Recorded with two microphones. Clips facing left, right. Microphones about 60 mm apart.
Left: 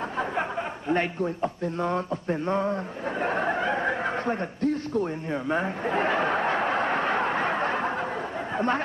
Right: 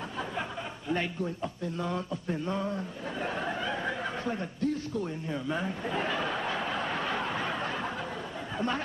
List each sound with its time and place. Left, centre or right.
0.4 s chuckle: left
8.5 s speech: left